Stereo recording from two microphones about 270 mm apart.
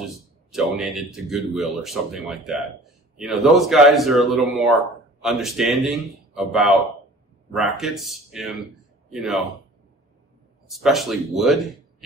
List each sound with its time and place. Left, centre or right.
0.5 s speech: centre
10.7 s speech: centre